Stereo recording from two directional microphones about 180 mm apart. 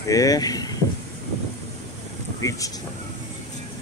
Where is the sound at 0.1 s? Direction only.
20° left (ahead or behind).